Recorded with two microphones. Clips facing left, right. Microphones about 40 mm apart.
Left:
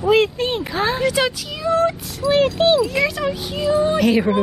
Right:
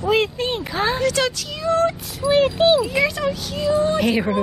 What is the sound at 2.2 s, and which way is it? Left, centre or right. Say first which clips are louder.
Speech: even; centre.